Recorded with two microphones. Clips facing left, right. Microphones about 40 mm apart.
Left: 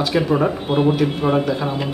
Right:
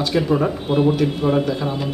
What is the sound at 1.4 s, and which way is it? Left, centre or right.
Speech, centre.